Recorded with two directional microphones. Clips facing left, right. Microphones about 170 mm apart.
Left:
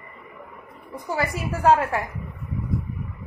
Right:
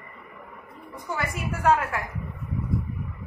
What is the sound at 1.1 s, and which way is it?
Speech, 35° left (ahead or behind).